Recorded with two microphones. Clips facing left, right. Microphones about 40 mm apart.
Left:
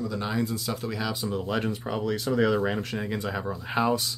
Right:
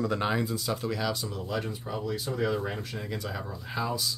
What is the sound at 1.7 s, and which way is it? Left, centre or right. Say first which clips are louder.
Speech: left 5 dB; left.